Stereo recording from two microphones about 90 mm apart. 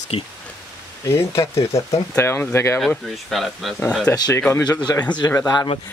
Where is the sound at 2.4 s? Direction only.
25° left (ahead or behind).